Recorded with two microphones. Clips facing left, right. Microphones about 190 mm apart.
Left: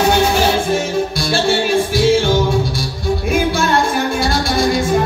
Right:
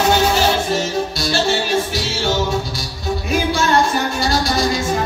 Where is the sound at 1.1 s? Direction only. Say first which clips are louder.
Left 2 dB; 55° left (ahead or behind).